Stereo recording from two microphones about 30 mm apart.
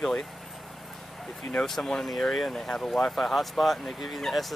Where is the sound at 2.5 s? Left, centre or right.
Left.